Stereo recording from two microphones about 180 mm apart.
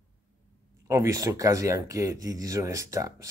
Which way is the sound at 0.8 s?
20° right (ahead or behind).